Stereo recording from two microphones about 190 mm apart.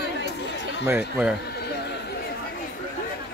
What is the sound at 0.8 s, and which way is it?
Speech, 10° right (ahead or behind).